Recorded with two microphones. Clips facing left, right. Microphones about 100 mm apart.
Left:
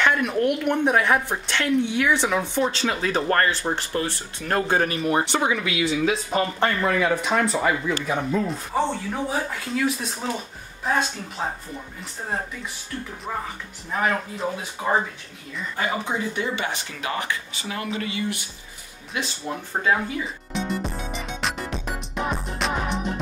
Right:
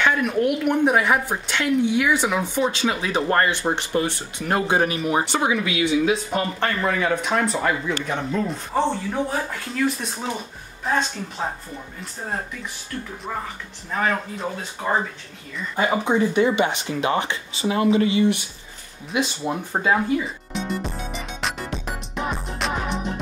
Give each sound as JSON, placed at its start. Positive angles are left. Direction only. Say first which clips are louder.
{"t": 0.0, "sound": "speech", "louder": "right 1 dB", "side_deg": -5}
{"t": 13.9, "sound": "speech", "louder": "right 1 dB", "side_deg": 5}
{"t": 15.7, "sound": "speech", "louder": "right 6 dB", "side_deg": -25}
{"t": 20.5, "sound": "music", "louder": "even", "side_deg": 0}